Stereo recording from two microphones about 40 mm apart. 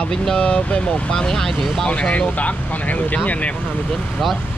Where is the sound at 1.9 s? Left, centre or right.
Left.